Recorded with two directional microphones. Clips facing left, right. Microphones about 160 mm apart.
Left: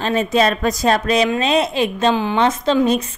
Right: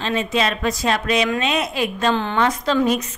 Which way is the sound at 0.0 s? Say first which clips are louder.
Left 5 dB; 40° left (ahead or behind).